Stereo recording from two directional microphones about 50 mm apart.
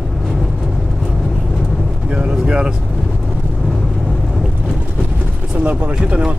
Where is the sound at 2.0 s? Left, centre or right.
Centre.